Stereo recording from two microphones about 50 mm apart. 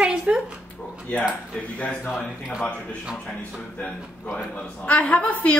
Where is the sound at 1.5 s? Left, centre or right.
Left.